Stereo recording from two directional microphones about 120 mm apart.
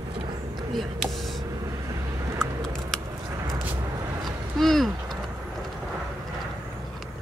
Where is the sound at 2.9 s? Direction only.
5° left (ahead or behind).